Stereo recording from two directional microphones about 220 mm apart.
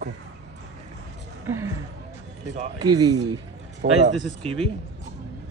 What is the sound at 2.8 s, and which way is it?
Speech, 20° right (ahead or behind).